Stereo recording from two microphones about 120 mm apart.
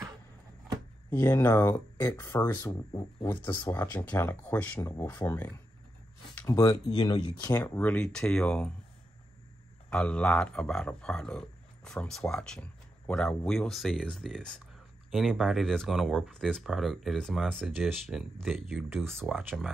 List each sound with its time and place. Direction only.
1.1 s speech: 15° left (ahead or behind)
1.4 s speech: 25° left (ahead or behind)
2.9 s speech: 40° left (ahead or behind)
3.7 s speech: 15° left (ahead or behind)
5.1 s speech: 20° left (ahead or behind)
7.6 s speech: 15° left (ahead or behind)
9.8 s speech: 10° left (ahead or behind)